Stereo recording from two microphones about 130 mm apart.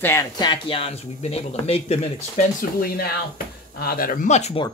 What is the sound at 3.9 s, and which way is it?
Speech, 90° left.